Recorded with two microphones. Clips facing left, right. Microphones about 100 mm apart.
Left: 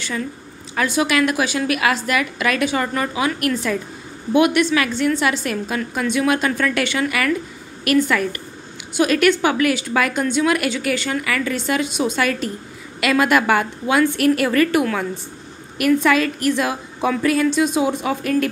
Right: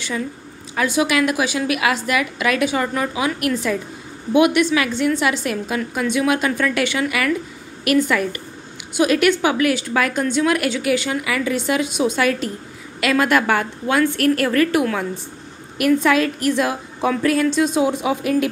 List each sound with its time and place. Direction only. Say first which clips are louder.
0.0 s a woman's voice: right 1 dB; 10° right (ahead or behind)